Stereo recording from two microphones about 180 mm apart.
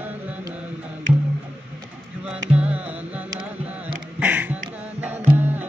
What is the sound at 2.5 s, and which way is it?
Music, 5° right (ahead or behind).